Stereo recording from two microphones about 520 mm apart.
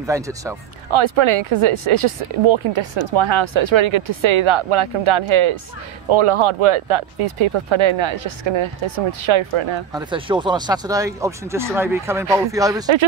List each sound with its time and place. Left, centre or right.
0.0 s speech: centre
0.8 s speech: right
9.9 s speech: centre